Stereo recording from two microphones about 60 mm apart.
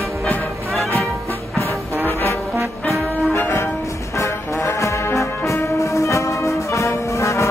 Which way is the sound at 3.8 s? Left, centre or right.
Left.